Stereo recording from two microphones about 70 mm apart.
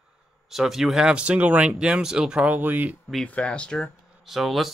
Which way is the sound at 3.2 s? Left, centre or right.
Centre.